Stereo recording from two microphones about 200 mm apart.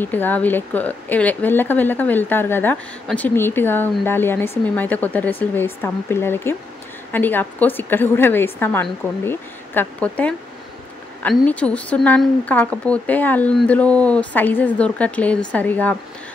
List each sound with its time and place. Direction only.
0.0 s speech: 10° left (ahead or behind)